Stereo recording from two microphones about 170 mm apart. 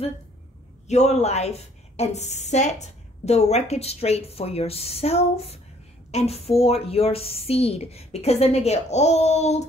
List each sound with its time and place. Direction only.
0.8 s a woman's voice: 40° left (ahead or behind)